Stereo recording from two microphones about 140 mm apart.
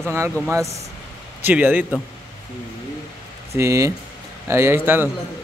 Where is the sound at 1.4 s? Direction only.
10° right (ahead or behind).